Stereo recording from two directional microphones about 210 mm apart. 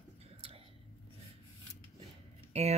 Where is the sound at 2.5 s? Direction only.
30° right (ahead or behind).